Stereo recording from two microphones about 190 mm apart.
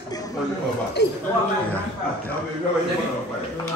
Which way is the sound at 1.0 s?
65° left (ahead or behind).